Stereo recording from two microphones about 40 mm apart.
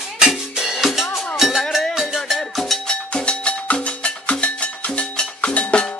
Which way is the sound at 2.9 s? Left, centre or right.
Left.